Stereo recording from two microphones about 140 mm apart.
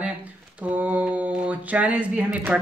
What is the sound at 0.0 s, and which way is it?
Mantra, 10° right (ahead or behind).